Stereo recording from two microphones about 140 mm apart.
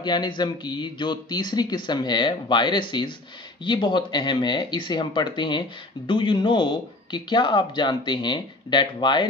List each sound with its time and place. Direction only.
0.0 s speech: 30° left (ahead or behind)